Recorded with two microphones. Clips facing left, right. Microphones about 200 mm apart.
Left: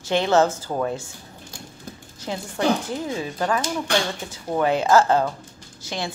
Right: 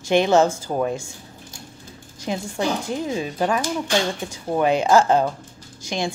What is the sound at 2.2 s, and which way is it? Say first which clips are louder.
Speech: left 1 dB; 15° right (ahead or behind).